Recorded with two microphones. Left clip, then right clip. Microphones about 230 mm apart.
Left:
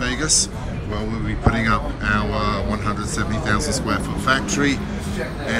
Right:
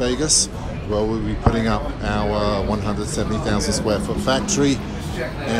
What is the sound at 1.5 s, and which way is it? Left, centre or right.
Speech, centre.